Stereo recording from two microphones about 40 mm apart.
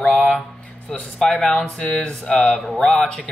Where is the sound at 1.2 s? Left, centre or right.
Centre.